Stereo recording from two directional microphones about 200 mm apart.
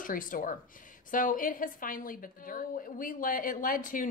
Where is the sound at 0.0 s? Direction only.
45° left (ahead or behind).